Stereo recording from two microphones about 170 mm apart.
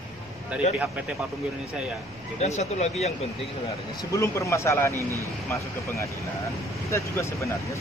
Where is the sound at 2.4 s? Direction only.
40° left (ahead or behind).